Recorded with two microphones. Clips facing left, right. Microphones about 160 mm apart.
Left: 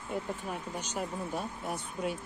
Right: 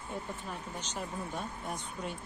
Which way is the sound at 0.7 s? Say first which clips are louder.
Left 2 dB; 10° left (ahead or behind).